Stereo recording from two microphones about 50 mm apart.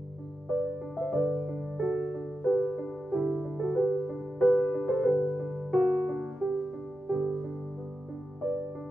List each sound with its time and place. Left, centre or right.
0.9 s music: centre
1.3 s music: centre
5.9 s music: centre